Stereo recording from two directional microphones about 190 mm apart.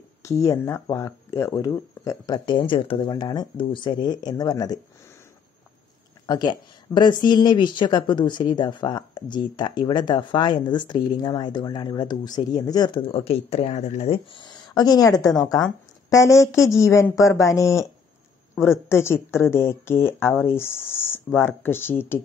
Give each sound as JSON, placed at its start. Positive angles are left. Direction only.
{"t": 0.2, "sound": "speech", "side_deg": 15}
{"t": 6.2, "sound": "speech", "side_deg": 20}